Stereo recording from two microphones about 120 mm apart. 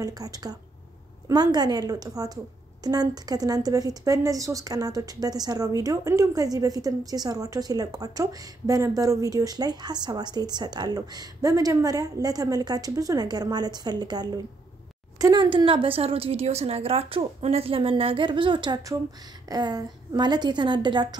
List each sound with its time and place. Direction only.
0.0 s a woman's voice: 30° right (ahead or behind)